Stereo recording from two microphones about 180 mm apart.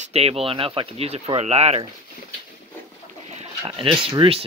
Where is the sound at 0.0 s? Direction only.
35° right (ahead or behind).